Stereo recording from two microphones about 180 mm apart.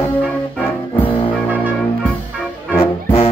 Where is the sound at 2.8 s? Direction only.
30° left (ahead or behind).